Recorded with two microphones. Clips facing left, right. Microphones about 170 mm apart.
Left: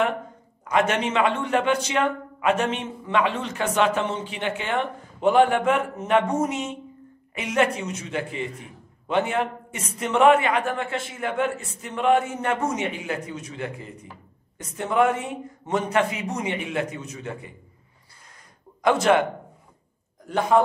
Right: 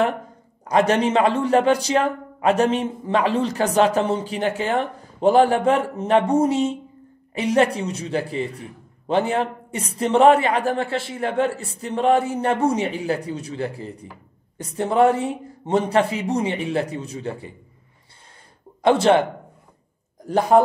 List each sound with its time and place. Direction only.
0.7 s a man's voice: 35° right (ahead or behind)
18.8 s speech: 30° right (ahead or behind)
20.2 s a man's voice: 35° right (ahead or behind)